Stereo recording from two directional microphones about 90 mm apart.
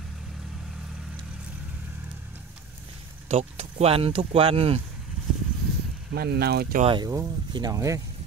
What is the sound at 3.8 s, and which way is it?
Speech, 90° right.